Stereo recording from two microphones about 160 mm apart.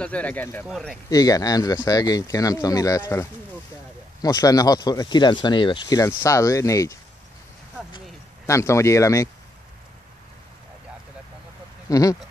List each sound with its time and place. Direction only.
0.0 s speech: 10° left (ahead or behind)
0.7 s speech: centre (ahead or behind)
1.1 s speech: 20° left (ahead or behind)
8.5 s speech: 20° left (ahead or behind)
11.9 s speech: 20° left (ahead or behind)